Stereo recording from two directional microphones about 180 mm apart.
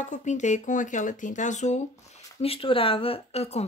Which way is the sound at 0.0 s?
40° left (ahead or behind).